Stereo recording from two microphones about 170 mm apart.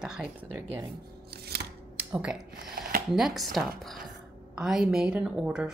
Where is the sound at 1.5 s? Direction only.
70° right (ahead or behind).